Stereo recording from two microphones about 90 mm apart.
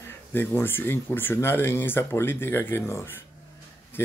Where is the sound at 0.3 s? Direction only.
25° left (ahead or behind).